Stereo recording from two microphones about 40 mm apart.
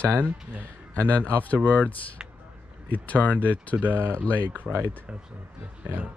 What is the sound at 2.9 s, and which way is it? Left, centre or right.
Speech, left.